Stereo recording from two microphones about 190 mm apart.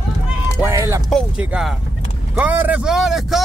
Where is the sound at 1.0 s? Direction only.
Centre (ahead or behind).